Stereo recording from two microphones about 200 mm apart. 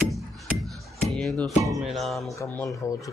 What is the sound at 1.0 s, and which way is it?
Speech, centre (ahead or behind).